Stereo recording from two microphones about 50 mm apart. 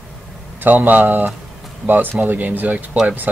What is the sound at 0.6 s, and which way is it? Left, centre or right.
Speech, right.